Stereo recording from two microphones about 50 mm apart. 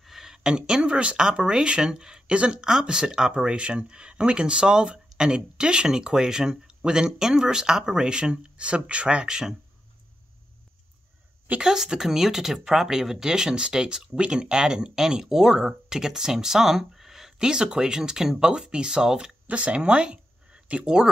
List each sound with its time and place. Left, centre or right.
0.0 s speech: centre
11.6 s speech: centre
19.4 s speech: right